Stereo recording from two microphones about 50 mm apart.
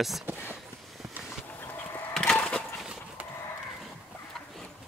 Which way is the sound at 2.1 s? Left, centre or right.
Centre.